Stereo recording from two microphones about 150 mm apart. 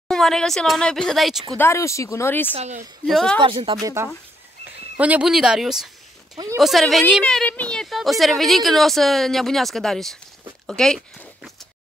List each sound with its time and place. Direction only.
0.1 s a woman's voice: 5° left (ahead or behind)
1.6 s speech: 20° left (ahead or behind)
2.5 s a woman's voice: 45° right (ahead or behind)
3.1 s a woman's voice: centre (ahead or behind)
3.3 s speech: 35° right (ahead or behind)
3.8 s a woman's voice: 15° right (ahead or behind)
6.3 s speech: 25° right (ahead or behind)
6.6 s a woman's voice: centre (ahead or behind)